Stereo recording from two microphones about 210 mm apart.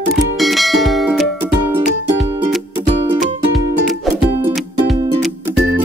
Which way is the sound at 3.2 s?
Centre (ahead or behind).